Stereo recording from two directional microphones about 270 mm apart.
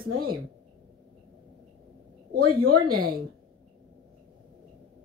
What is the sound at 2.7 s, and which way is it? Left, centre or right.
Speech, right.